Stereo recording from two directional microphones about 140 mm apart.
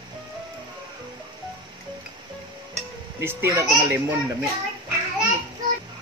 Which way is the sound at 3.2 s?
15° right (ahead or behind).